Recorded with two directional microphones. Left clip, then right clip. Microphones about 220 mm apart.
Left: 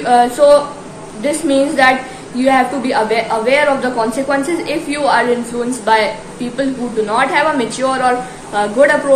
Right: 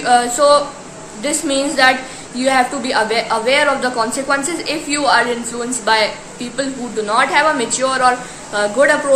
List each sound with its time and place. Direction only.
0.0 s a woman's voice: 10° right (ahead or behind)